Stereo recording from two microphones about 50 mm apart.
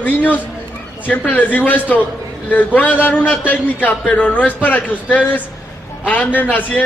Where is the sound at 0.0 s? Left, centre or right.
Left.